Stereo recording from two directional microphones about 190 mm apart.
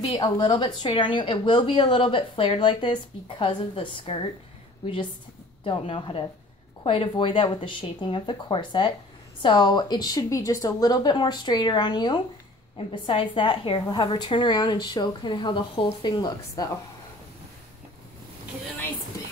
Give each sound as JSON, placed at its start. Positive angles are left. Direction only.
{"t": 0.1, "sound": "a woman's voice", "side_deg": 25}
{"t": 5.6, "sound": "a woman's voice", "side_deg": 25}